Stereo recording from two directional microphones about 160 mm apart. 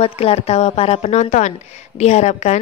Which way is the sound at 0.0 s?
40° left (ahead or behind).